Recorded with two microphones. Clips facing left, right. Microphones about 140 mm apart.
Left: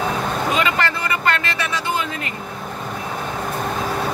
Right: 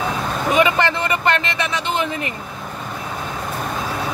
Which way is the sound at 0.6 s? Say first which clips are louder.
Right 4 dB; 20° right (ahead or behind).